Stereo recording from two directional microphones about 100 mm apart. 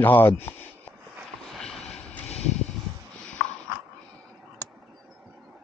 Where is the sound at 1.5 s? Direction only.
5° left (ahead or behind).